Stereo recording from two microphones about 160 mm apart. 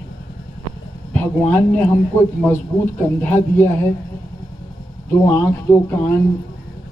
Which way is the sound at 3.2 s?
10° left (ahead or behind).